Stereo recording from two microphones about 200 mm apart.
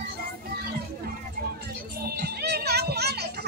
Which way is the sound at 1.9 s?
50° right (ahead or behind).